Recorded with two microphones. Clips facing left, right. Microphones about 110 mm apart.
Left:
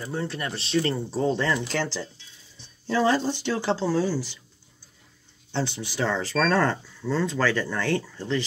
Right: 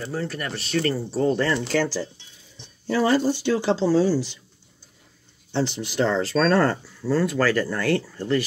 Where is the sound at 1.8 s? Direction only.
15° right (ahead or behind).